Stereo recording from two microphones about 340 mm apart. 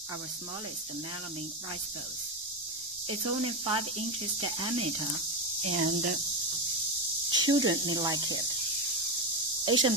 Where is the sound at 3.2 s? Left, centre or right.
Right.